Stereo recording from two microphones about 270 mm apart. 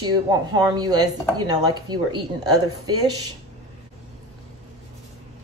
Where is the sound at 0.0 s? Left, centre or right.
Centre.